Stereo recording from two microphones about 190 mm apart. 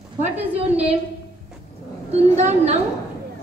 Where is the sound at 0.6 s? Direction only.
30° right (ahead or behind).